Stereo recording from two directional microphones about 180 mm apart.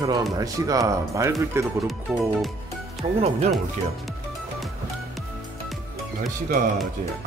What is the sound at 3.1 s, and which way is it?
Speech, 35° right (ahead or behind).